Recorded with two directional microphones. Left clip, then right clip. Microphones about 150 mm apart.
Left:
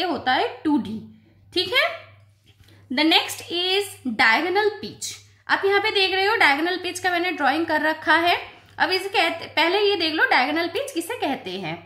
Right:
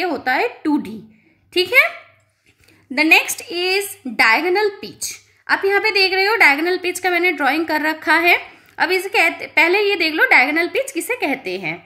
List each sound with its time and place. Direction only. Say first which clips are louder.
0.0 s a woman's voice: right 3 dB; 30° right (ahead or behind)
2.9 s a woman's voice: right 6 dB; 30° right (ahead or behind)